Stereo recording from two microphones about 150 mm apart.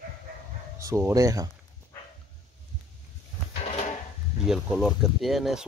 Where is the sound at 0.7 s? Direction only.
20° right (ahead or behind).